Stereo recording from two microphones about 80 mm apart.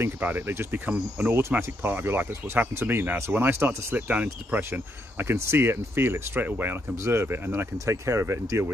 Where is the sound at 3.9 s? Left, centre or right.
Centre.